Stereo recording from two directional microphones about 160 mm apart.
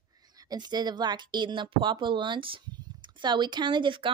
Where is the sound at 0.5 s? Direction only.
25° right (ahead or behind).